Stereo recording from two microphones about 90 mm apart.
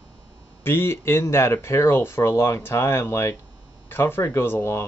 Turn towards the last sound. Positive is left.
turn(degrees=30)  # may be behind; listen again after turning